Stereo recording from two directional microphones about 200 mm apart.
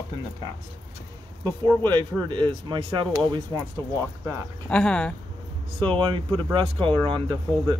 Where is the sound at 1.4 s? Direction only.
20° right (ahead or behind).